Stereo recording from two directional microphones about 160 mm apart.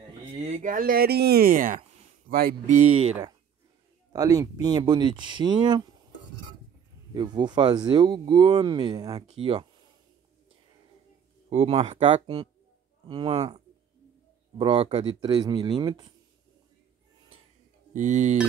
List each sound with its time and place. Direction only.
0.6 s speech: 60° right (ahead or behind)
4.1 s speech: 25° right (ahead or behind)
7.2 s speech: 25° right (ahead or behind)
11.5 s speech: 40° right (ahead or behind)
14.6 s speech: 35° right (ahead or behind)
15.1 s speech: 25° right (ahead or behind)
17.9 s speech: 50° right (ahead or behind)